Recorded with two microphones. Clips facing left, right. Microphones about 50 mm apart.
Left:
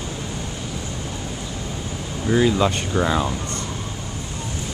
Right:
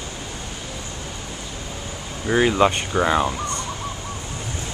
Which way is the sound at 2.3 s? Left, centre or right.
Right.